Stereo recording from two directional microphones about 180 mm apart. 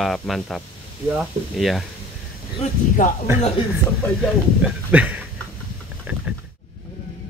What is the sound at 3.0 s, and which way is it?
Speech, 45° left (ahead or behind).